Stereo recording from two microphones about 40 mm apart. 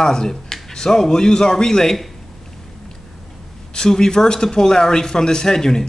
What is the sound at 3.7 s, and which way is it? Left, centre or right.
A man's voice, centre.